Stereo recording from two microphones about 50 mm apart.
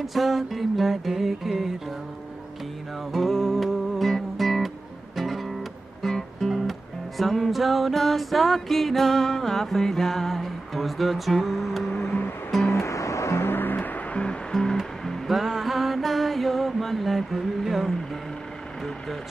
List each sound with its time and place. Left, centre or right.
0.0 s music: centre
3.1 s music: centre
12.6 s music: left
13.5 s music: left
14.5 s music: centre